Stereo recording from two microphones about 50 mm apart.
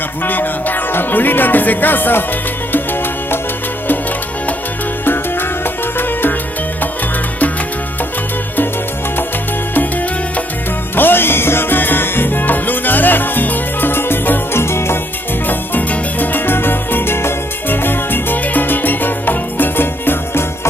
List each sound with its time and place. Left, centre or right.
0.2 s music: left
5.0 s music: left
11.0 s music: left
14.6 s music: left
15.4 s music: left